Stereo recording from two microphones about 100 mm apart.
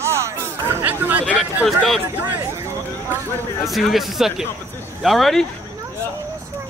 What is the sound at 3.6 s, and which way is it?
Speech, centre (ahead or behind).